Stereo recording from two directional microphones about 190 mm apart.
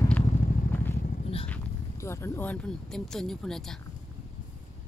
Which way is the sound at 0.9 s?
40° left (ahead or behind).